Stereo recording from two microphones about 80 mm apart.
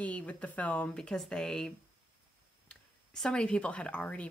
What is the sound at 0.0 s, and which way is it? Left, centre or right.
Speech, centre.